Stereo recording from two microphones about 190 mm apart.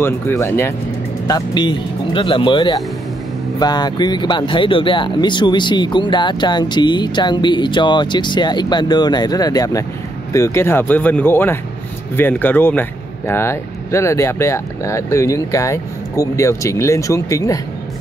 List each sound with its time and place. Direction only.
0.0 s speech: 10° left (ahead or behind)